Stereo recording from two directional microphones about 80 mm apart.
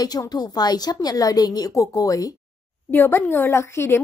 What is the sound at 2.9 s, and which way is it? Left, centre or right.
A woman's voice, left.